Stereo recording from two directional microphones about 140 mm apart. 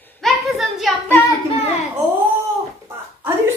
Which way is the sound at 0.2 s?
Centre (ahead or behind).